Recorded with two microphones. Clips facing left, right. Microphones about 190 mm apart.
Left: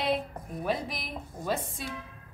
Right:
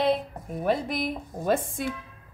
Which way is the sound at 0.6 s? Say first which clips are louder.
Right 7 dB; 55° right (ahead or behind).